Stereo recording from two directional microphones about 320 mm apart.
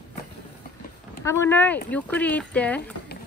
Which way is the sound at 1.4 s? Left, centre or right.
Centre.